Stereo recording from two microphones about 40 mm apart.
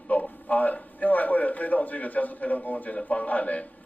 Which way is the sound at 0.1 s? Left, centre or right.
Left.